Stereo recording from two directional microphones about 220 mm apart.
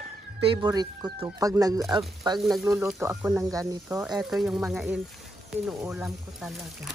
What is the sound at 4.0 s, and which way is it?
Speech, centre (ahead or behind).